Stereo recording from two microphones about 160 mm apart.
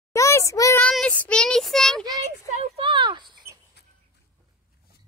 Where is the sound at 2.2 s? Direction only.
35° right (ahead or behind).